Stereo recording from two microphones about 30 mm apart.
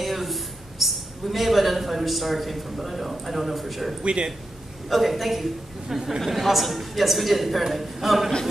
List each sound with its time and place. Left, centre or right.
0.0 s a man's voice: centre
4.0 s speech: right
4.8 s a man's voice: centre